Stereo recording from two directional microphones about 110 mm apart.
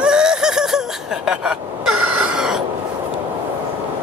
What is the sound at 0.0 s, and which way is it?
Fowl, 5° right (ahead or behind).